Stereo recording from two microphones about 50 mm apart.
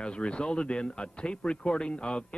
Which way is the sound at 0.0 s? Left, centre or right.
Left.